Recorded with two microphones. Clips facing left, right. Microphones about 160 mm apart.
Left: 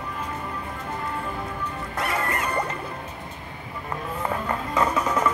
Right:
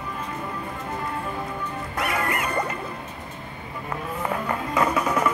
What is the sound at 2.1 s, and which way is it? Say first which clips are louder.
Music: right 1 dB; 30° left (ahead or behind).